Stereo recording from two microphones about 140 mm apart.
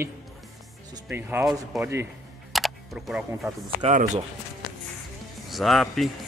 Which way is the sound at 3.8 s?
60° right (ahead or behind).